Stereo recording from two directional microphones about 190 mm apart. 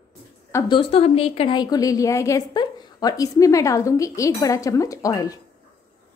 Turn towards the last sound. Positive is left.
turn(degrees=20)  # may be behind; listen again after turning